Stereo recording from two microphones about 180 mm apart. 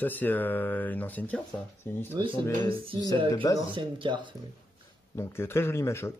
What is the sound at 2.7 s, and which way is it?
Speech, 30° right (ahead or behind).